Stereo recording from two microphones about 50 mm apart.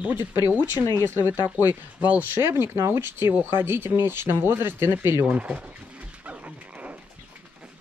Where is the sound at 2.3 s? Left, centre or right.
Right.